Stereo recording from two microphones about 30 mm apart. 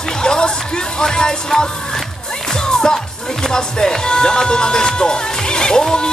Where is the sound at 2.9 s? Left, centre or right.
Left.